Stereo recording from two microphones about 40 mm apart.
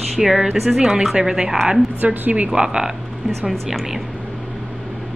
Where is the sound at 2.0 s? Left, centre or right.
Right.